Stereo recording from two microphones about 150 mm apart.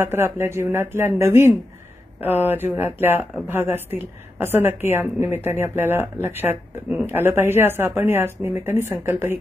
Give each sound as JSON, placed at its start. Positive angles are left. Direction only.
{"t": 0.0, "sound": "a woman's voice", "side_deg": -15}